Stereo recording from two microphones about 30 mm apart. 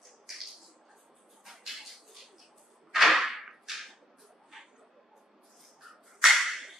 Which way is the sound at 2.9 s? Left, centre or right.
Centre.